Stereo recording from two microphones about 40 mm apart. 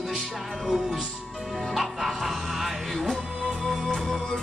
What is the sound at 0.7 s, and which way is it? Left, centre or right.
Music, centre.